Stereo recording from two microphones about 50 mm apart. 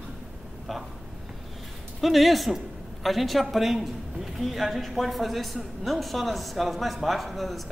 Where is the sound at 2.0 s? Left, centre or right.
Centre.